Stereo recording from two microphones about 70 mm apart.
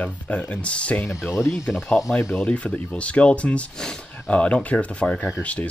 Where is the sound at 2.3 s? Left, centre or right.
Centre.